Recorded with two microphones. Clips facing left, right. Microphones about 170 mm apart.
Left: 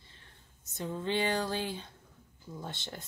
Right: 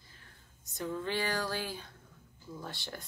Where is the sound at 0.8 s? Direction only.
20° left (ahead or behind).